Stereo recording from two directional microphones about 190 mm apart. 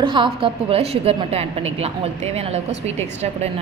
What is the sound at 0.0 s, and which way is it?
A woman's voice, 25° right (ahead or behind).